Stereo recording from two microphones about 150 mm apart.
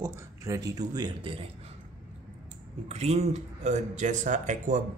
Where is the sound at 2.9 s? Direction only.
45° right (ahead or behind).